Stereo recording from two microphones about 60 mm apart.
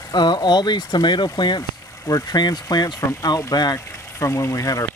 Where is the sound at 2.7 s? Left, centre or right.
Left.